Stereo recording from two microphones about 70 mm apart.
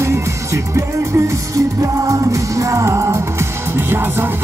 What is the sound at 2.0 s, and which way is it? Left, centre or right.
Music, right.